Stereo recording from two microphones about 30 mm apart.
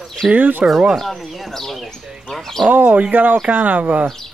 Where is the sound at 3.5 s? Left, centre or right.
Right.